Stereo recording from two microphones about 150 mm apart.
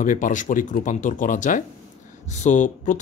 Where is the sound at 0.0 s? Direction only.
60° left (ahead or behind).